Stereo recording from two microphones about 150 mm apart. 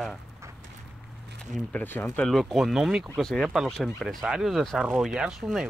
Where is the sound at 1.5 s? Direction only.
10° left (ahead or behind).